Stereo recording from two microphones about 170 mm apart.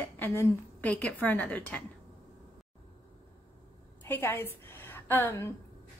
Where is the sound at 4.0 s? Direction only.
10° left (ahead or behind).